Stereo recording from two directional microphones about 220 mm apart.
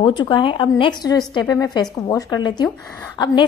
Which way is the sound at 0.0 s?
20° left (ahead or behind).